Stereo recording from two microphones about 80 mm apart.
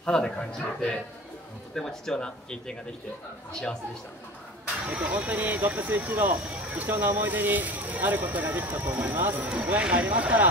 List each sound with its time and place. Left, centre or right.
0.0 s speech: centre
5.0 s speech: right